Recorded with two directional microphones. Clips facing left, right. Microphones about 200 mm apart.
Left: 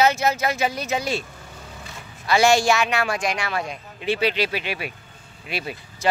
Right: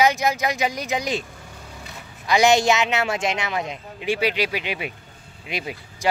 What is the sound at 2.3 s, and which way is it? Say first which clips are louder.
A woman's voice: even; 20° right (ahead or behind).